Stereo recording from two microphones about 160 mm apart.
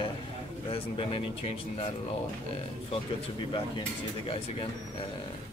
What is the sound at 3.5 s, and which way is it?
Speech, 35° left (ahead or behind).